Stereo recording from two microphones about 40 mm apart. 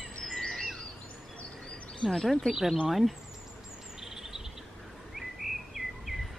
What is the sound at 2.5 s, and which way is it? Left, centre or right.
Speech, centre.